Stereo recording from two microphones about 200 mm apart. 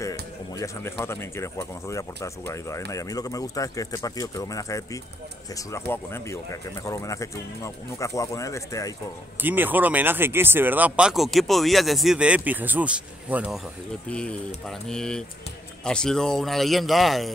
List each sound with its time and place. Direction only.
0.6 s speech: 15° left (ahead or behind)
9.4 s speech: 10° right (ahead or behind)
14.0 s speech: 5° left (ahead or behind)